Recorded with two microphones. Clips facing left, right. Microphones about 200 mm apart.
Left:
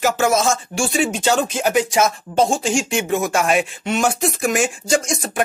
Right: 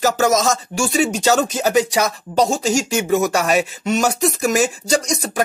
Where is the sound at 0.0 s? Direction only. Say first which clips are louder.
Right 1 dB; 40° right (ahead or behind).